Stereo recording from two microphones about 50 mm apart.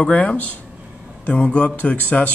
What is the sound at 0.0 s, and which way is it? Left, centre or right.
A man's voice, left.